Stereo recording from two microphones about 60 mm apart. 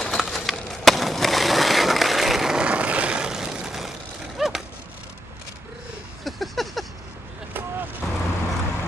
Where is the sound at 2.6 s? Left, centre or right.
Right; by 3.9 s centre.